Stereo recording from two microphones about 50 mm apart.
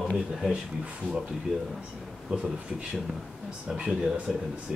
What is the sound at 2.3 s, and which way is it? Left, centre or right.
Speech, centre.